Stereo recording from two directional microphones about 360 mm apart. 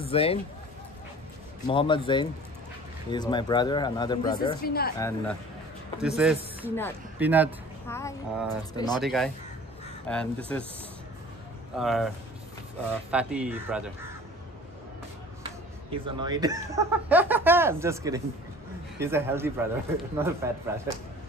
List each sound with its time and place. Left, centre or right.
0.0 s speech: centre
1.7 s speech: centre
4.6 s speech: left
4.9 s speech: centre
7.9 s speech: centre
9.0 s speech: centre
11.7 s speech: centre
13.1 s speech: centre
15.9 s speech: centre